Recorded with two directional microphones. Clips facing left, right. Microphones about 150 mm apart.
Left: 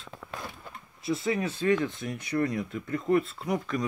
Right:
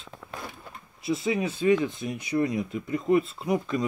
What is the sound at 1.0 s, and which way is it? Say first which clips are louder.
Speech: right 2 dB; 20° right (ahead or behind).